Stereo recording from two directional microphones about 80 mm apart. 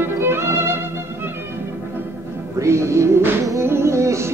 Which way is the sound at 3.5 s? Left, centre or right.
Right.